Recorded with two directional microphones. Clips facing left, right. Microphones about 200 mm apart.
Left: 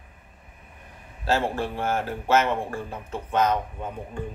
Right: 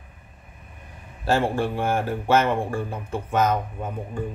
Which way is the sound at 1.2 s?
15° right (ahead or behind).